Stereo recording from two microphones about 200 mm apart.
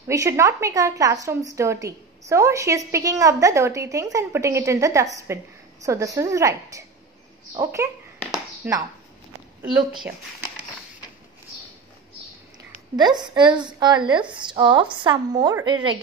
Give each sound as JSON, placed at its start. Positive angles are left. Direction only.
{"t": 0.1, "sound": "a woman's voice", "side_deg": -15}
{"t": 12.9, "sound": "a woman's voice", "side_deg": -20}